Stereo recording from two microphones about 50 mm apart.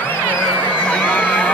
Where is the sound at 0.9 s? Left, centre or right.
Left.